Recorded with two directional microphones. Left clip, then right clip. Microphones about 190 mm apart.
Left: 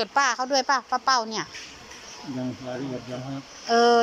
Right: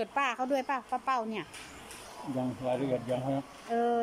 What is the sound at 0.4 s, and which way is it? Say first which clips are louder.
A woman's voice: left 8 dB; 15° right (ahead or behind).